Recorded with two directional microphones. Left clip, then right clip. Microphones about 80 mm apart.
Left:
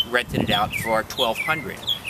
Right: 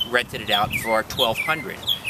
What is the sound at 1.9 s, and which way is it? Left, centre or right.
Bird, right.